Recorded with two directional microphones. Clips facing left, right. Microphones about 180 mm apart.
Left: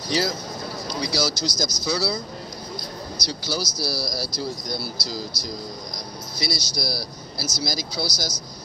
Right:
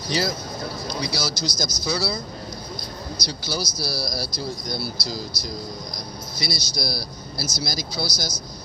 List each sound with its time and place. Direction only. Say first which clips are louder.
0.8 s speech: left 4 dB; 55° right (ahead or behind)
3.2 s speech: left 1 dB; 55° right (ahead or behind)